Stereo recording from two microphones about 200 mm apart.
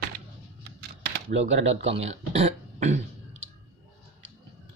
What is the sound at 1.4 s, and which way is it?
Speech, 70° right (ahead or behind).